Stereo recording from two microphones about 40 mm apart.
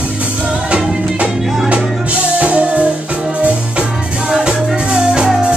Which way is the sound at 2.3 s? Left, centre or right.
Right.